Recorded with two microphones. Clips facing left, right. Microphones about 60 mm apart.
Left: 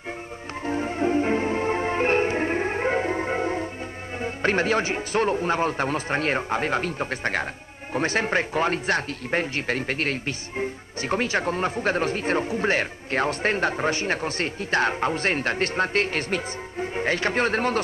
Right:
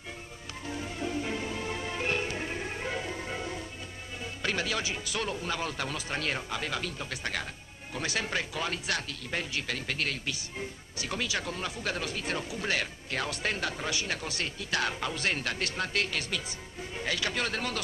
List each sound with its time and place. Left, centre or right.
0.7 s music: left
4.2 s speech: left